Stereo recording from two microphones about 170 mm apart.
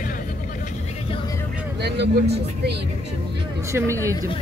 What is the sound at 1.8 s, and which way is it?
Speech, 90° right.